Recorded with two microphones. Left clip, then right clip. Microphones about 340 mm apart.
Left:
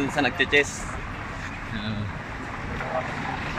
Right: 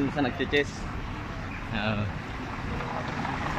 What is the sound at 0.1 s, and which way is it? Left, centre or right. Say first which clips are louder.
Speech: left 6 dB; left.